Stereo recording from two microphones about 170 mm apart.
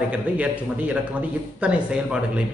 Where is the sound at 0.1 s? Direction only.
10° right (ahead or behind).